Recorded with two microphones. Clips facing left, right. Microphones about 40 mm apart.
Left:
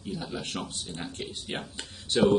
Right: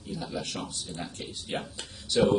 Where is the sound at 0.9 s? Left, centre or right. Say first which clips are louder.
Left 1 dB; left.